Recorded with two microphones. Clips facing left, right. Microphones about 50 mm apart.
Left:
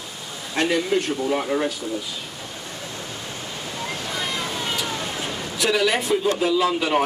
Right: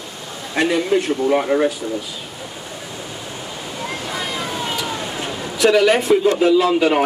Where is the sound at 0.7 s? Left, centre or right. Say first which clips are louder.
Right 4 dB; centre.